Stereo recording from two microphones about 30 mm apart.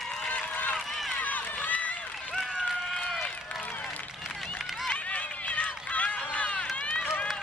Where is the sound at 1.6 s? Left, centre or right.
Left.